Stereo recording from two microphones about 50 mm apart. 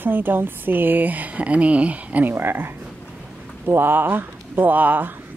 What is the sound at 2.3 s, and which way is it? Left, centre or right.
Speech, right.